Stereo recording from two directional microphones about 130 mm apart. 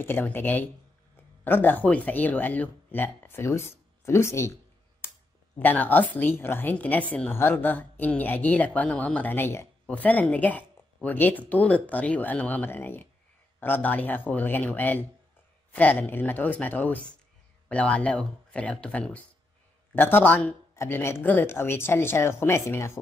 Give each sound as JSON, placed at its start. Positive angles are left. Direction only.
{"t": 0.0, "sound": "a woman's voice", "side_deg": 15}
{"t": 5.6, "sound": "a woman's voice", "side_deg": 15}